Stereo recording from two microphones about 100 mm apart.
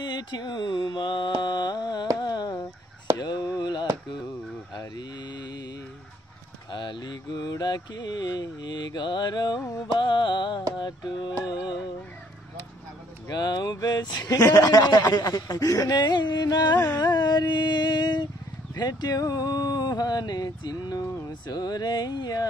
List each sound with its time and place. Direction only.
0.0 s mantra: 45° left (ahead or behind)
2.1 s a sound: 45° left (ahead or behind)
4.7 s mantra: 45° left (ahead or behind)
6.7 s mantra: 50° left (ahead or behind)
11.4 s music: 45° left (ahead or behind)
13.3 s a sound: 45° left (ahead or behind)
16.7 s carnatic music: 15° left (ahead or behind)
17.0 s mantra: 45° left (ahead or behind)
18.8 s a sound: 45° left (ahead or behind)